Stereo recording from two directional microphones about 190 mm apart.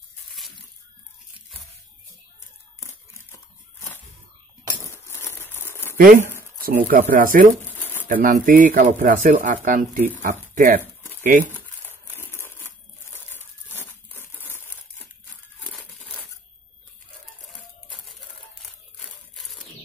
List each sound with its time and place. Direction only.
4.8 s crumpling: 15° left (ahead or behind)
5.9 s speech: 50° right (ahead or behind)
7.8 s pigeon: 10° left (ahead or behind)
8.1 s speech: 45° right (ahead or behind)
10.5 s a sound: 50° right (ahead or behind)
10.8 s a sound: 10° left (ahead or behind)
11.2 s speech: 45° right (ahead or behind)
12.2 s crushing: 10° left (ahead or behind)
13.1 s crumpling: 10° left (ahead or behind)
19.3 s a sound: centre (ahead or behind)